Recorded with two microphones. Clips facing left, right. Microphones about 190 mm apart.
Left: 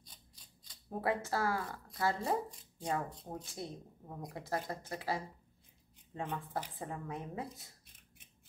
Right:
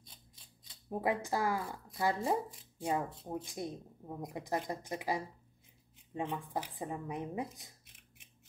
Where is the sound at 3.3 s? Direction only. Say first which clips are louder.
Right 5 dB; 15° right (ahead or behind).